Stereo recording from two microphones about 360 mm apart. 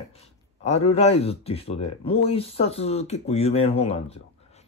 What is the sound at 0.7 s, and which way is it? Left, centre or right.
Speech, centre.